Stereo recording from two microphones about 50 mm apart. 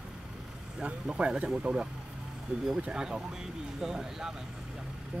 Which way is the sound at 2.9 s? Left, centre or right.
Centre.